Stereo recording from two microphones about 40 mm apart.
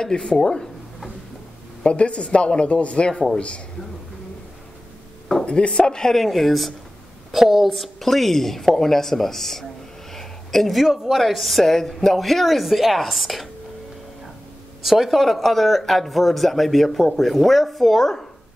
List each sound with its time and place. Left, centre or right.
0.0 s speech: left
0.4 s a sound: centre
1.9 s speech: left
5.4 s a sound: left
5.8 s a woman's voice: centre
6.1 s a woman's voice: centre
10.1 s a sound: centre
10.9 s speech: centre
14.8 s speech: centre